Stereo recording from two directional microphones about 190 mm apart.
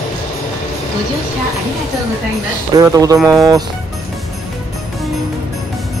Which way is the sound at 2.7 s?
20° right (ahead or behind).